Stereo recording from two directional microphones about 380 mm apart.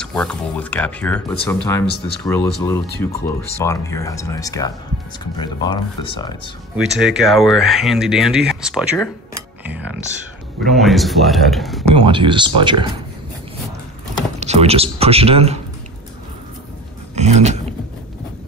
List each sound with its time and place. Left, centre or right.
0.0 s speech: centre
7.0 s speech: centre
12.1 s speech: centre
14.4 s speech: centre
17.1 s a sound: centre